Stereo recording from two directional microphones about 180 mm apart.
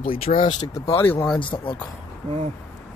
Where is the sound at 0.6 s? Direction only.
25° left (ahead or behind).